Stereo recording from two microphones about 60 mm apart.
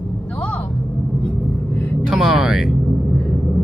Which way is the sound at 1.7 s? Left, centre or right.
Left.